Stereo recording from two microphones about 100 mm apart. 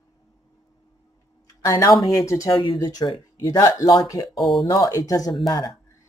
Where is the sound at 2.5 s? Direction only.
45° left (ahead or behind).